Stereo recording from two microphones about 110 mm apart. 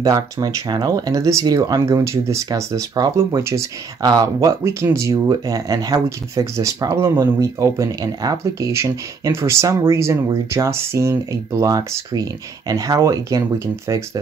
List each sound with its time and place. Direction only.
0.0 s speech: 35° right (ahead or behind)
4.0 s speech: 40° right (ahead or behind)
4.5 s speech: 25° right (ahead or behind)